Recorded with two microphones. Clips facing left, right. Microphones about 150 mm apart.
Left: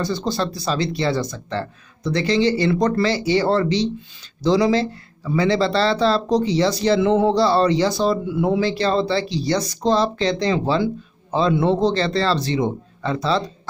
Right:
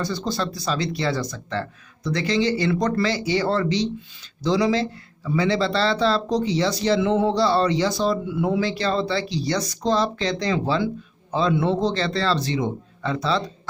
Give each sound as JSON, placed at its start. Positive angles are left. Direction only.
{"t": 0.0, "sound": "speech", "side_deg": 30}